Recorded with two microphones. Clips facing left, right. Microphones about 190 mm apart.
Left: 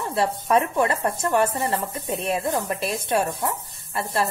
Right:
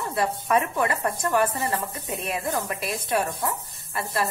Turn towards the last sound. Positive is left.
turn(degrees=25)  # may be behind; listen again after turning